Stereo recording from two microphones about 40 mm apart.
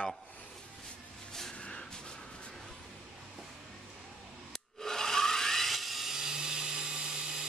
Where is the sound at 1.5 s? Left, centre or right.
Left.